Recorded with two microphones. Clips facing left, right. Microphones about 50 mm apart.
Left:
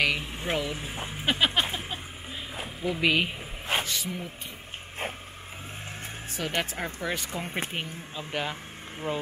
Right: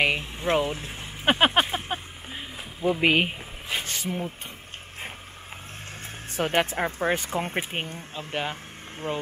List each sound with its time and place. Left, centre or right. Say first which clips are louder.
0.0 s vehicle: right 2 dB; right
0.5 s speech: right 6 dB; right
0.7 s speech: left 1 dB; centre
1.2 s a sound: right 5 dB; right
2.8 s speech: right 4 dB; right
3.8 s a sound: right 3 dB; right
6.3 s speech: right 7 dB; right
7.2 s speech: right 4 dB; centre
9.0 s speech: right 1 dB; centre